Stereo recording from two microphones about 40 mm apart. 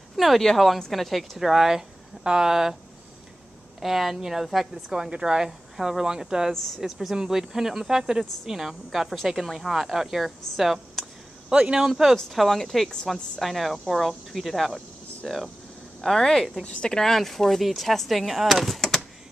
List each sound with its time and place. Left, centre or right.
0.1 s a sound: centre
0.6 s speech: centre
1.4 s speech: centre
3.8 s speech: centre
6.5 s speech: centre
6.8 s speech: centre
10.6 s a sound: centre
11.5 s speech: right
11.8 s speech: centre
12.3 s speech: centre
16.6 s speech: left
17.0 s speech: centre